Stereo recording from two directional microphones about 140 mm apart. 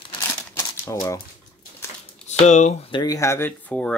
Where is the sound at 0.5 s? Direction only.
20° left (ahead or behind).